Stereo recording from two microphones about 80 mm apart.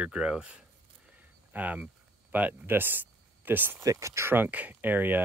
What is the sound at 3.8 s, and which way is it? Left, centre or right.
Speech, right.